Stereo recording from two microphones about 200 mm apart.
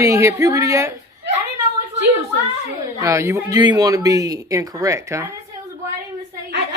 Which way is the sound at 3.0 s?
15° right (ahead or behind).